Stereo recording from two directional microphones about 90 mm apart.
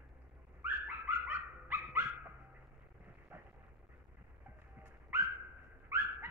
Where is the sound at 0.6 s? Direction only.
25° right (ahead or behind).